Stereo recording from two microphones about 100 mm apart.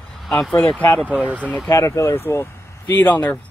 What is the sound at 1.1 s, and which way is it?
Speech, 15° right (ahead or behind).